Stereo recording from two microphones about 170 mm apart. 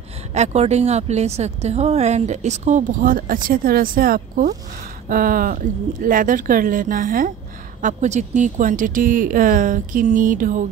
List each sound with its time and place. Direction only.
0.3 s a woman's voice: 40° right (ahead or behind)
7.8 s speech: 45° right (ahead or behind)